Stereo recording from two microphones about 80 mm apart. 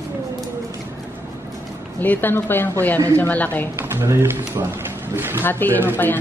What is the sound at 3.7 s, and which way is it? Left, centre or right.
A man's voice, right.